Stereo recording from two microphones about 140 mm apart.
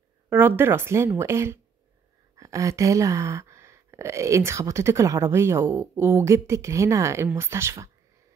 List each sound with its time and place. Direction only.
0.3 s a woman's voice: 15° right (ahead or behind)